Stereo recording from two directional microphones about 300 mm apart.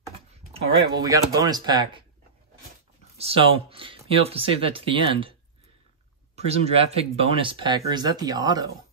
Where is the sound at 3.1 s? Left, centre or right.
Centre.